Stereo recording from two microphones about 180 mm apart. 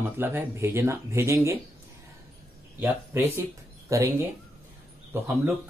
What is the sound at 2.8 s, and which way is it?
Speech, 15° right (ahead or behind).